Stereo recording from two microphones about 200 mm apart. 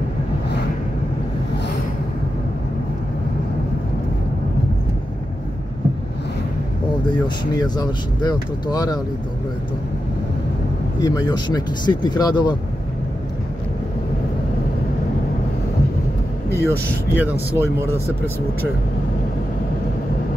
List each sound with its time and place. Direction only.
7.5 s speech: 20° left (ahead or behind)
11.0 s speech: 20° left (ahead or behind)
16.6 s speech: 10° right (ahead or behind)
17.5 s speech: 15° left (ahead or behind)